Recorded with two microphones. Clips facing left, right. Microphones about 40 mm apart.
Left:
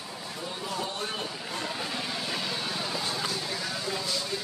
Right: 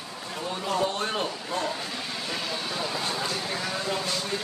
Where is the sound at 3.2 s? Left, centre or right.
Right.